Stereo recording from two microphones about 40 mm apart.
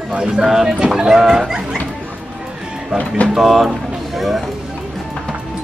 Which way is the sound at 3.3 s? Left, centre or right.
Centre.